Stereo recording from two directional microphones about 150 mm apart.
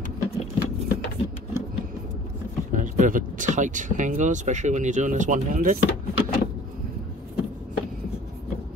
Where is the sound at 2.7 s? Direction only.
60° right (ahead or behind).